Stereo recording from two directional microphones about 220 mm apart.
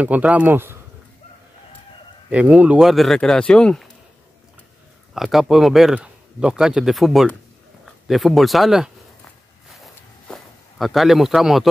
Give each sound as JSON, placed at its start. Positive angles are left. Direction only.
{"t": 0.0, "sound": "speech", "side_deg": -5}
{"t": 2.3, "sound": "speech", "side_deg": -5}
{"t": 5.1, "sound": "speech", "side_deg": 0}
{"t": 9.8, "sound": "a sound", "side_deg": 0}